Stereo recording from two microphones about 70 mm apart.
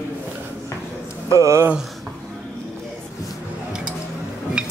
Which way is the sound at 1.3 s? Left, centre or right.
Right.